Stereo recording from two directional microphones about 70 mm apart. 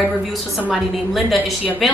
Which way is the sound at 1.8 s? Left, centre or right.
Centre.